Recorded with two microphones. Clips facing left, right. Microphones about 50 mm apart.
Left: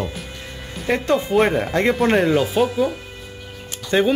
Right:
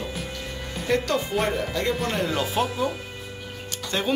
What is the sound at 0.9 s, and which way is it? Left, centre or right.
Speech, left.